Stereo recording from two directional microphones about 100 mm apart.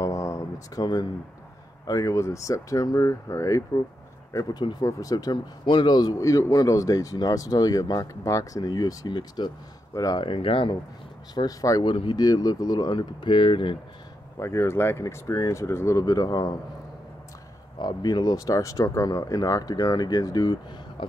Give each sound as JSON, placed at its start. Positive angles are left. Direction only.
{"t": 0.0, "sound": "a sound", "side_deg": 30}
{"t": 1.9, "sound": "a man's voice", "side_deg": 30}
{"t": 5.7, "sound": "a man's voice", "side_deg": 50}
{"t": 10.2, "sound": "speech", "side_deg": 65}
{"t": 11.3, "sound": "a man's voice", "side_deg": 40}
{"t": 11.8, "sound": "speech", "side_deg": 55}
{"t": 12.2, "sound": "speech", "side_deg": 40}
{"t": 14.4, "sound": "a man's voice", "side_deg": 30}
{"t": 17.7, "sound": "a man's voice", "side_deg": 45}
{"t": 21.0, "sound": "a sound", "side_deg": 60}